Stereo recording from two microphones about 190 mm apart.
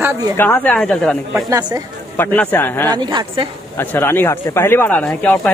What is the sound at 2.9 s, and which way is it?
Speech, 25° right (ahead or behind).